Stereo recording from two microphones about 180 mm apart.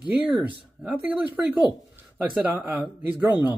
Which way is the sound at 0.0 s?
5° right (ahead or behind).